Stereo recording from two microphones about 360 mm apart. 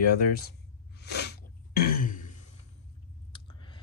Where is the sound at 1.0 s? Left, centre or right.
Left.